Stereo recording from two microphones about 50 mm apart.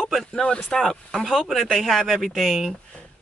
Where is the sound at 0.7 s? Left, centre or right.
Centre.